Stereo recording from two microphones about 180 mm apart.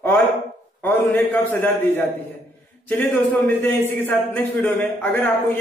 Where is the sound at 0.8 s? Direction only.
10° left (ahead or behind).